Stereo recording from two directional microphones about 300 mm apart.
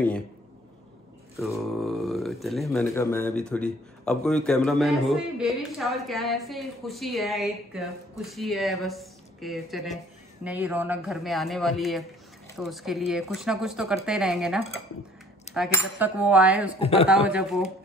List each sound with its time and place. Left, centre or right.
1.3 s speech: centre
15.5 s cutlery: left
15.9 s speech: centre
16.8 s a man's voice: centre
17.3 s speech: centre